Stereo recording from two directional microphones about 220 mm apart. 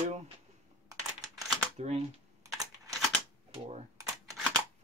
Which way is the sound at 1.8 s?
30° right (ahead or behind).